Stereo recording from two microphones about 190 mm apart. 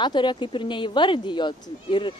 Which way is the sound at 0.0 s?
25° left (ahead or behind).